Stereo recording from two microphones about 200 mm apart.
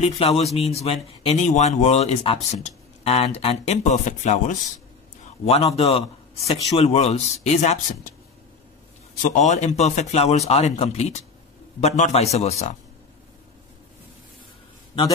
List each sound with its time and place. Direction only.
0.0 s speech: 30° left (ahead or behind)
9.2 s speech: 40° left (ahead or behind)